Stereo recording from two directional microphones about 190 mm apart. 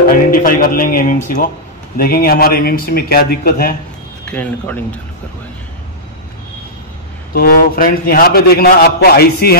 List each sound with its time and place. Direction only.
0.1 s a man's voice: 45° left (ahead or behind)
4.3 s speech: 5° left (ahead or behind)
7.3 s a man's voice: 50° left (ahead or behind)